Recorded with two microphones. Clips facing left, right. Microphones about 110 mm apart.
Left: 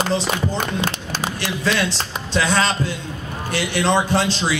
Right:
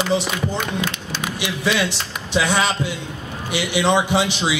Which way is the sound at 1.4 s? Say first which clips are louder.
Right 1 dB; 5° right (ahead or behind).